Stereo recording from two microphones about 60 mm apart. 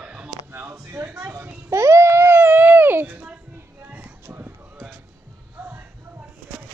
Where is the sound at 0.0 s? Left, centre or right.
Centre.